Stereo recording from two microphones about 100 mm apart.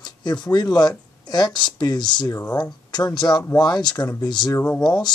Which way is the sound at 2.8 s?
45° left (ahead or behind).